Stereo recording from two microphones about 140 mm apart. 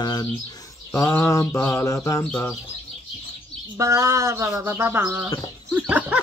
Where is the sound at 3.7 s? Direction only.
20° right (ahead or behind).